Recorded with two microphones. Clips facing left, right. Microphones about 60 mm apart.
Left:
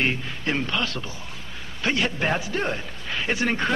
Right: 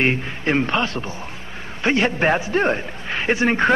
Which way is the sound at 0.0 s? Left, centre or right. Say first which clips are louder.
Right 5 dB; right.